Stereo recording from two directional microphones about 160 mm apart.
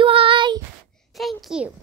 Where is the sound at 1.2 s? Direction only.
Centre (ahead or behind).